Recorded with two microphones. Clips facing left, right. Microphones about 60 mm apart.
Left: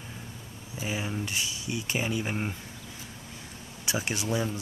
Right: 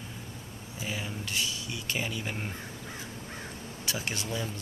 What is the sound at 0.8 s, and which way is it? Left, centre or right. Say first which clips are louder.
Speech: left 4 dB; centre.